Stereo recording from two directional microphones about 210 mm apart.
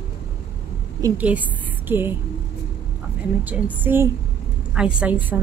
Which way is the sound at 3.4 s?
10° right (ahead or behind).